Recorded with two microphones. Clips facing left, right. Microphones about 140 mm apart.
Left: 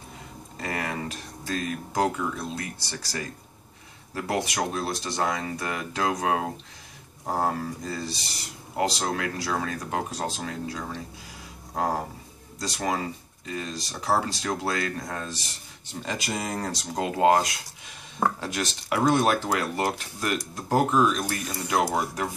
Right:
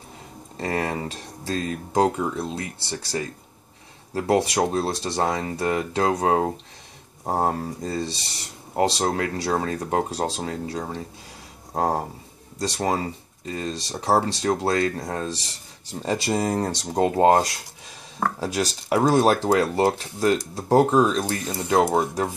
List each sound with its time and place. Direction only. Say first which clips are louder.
0.6 s speech: right 5 dB; 30° right (ahead or behind)
11.7 s a sound: right 4 dB; 35° right (ahead or behind)
12.5 s speech: right 4 dB; 30° right (ahead or behind)